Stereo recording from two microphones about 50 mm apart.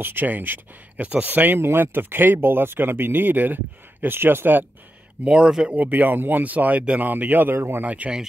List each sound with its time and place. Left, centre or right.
0.0 s speech: right
1.6 s speech: right
5.2 s speech: centre
5.8 s speech: right
7.5 s speech: right
7.8 s speech: right